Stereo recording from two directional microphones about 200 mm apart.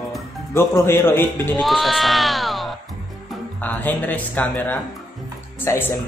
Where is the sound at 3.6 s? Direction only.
10° left (ahead or behind).